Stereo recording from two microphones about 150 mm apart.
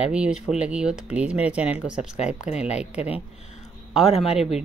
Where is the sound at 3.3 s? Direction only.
50° left (ahead or behind).